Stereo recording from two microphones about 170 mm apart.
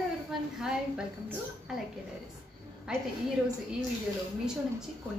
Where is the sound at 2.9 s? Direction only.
5° right (ahead or behind).